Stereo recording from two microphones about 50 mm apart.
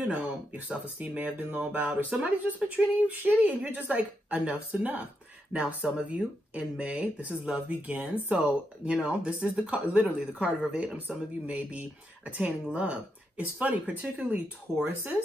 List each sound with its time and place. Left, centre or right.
0.1 s speech: right
11.0 s speech: right
14.8 s speech: right